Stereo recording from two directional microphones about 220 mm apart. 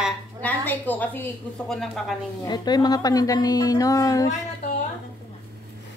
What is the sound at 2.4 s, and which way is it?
A woman's voice, 20° left (ahead or behind).